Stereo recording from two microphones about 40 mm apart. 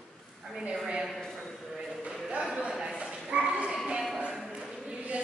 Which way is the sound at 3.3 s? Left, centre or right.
Right.